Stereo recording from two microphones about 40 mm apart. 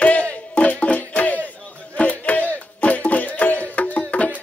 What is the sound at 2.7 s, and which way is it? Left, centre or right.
Music, left.